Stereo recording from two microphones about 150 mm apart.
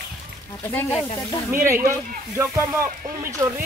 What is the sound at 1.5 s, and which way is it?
Speech, 15° right (ahead or behind).